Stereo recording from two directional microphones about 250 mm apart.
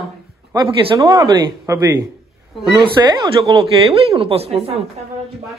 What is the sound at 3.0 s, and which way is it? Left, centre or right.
Speech, centre.